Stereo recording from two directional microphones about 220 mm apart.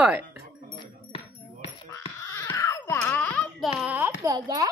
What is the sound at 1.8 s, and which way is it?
Baby cry, 10° left (ahead or behind).